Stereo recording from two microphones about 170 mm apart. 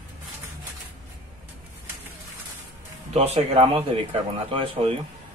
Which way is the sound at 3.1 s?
35° right (ahead or behind).